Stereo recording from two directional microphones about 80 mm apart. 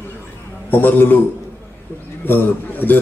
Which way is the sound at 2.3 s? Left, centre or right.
Left.